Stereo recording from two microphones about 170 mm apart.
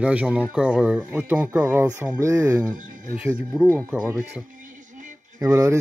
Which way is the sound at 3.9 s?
5° right (ahead or behind).